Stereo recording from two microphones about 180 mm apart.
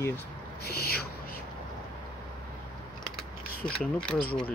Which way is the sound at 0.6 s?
60° left (ahead or behind).